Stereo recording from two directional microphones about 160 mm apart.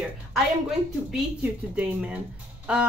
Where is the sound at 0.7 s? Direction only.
5° right (ahead or behind).